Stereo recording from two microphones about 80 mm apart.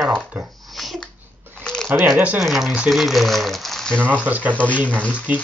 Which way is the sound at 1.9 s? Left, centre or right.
Right.